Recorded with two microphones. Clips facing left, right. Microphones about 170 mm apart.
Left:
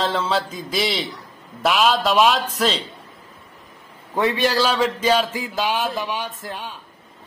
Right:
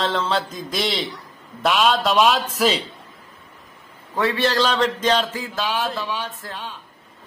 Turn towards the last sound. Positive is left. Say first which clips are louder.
# left 1 dB
turn(degrees=15)  # may be behind; listen again after turning